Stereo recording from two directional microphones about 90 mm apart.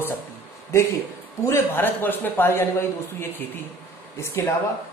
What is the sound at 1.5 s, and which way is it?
Speech, 25° left (ahead or behind).